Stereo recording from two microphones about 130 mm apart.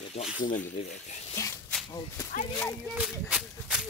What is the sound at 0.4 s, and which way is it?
Speech, 90° left.